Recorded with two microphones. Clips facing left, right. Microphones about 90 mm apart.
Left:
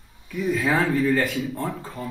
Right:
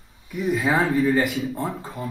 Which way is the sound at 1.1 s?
10° right (ahead or behind).